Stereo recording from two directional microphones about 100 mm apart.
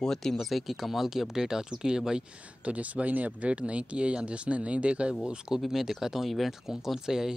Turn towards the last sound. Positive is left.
turn(degrees=-5)  # may be behind; listen again after turning